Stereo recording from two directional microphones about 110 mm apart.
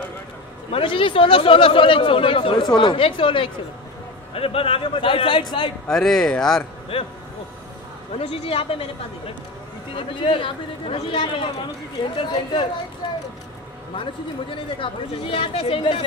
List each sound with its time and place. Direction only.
0.7 s speech: 55° left (ahead or behind)
5.9 s speech: 5° left (ahead or behind)
6.9 s speech: 60° left (ahead or behind)
8.1 s speech: 60° left (ahead or behind)
9.9 s speech: 50° left (ahead or behind)
13.0 s speech: 45° left (ahead or behind)
14.5 s speech: 55° left (ahead or behind)